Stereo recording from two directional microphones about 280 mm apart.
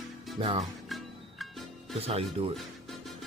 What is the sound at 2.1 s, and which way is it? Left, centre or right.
Speech, right.